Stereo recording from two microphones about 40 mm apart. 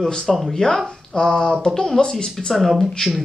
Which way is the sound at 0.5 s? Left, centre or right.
Centre.